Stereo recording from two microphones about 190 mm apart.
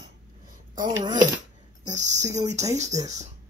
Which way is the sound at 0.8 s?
20° right (ahead or behind).